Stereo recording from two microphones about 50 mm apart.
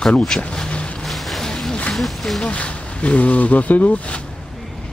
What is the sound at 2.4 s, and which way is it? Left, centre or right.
Speech, left.